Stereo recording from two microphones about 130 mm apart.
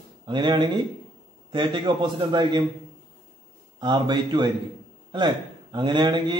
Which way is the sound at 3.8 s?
35° right (ahead or behind).